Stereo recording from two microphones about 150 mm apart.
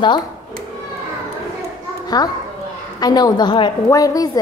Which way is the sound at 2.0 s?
25° left (ahead or behind).